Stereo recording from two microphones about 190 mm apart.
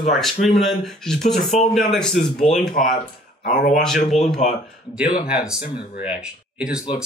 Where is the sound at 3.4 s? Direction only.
45° left (ahead or behind).